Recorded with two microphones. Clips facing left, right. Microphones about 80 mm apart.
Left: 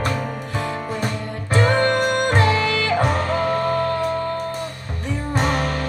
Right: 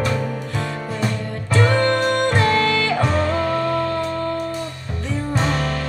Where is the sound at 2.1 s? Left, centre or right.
Centre.